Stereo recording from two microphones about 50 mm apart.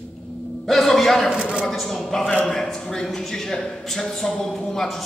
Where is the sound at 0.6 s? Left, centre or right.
Centre.